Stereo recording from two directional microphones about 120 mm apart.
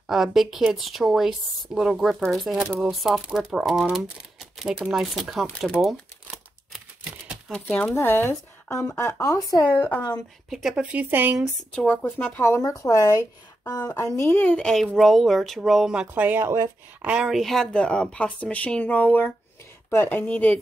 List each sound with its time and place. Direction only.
0.0 s speech: 5° right (ahead or behind)
7.5 s speech: 15° left (ahead or behind)
9.6 s speech: 15° left (ahead or behind)
10.5 s speech: 5° right (ahead or behind)
11.3 s speech: centre (ahead or behind)
12.4 s speech: 25° left (ahead or behind)
14.4 s speech: 10° left (ahead or behind)